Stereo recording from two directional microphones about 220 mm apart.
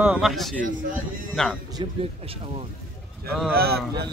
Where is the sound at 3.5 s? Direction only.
45° right (ahead or behind).